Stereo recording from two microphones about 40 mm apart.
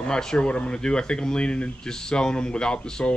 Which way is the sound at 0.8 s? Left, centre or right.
Left.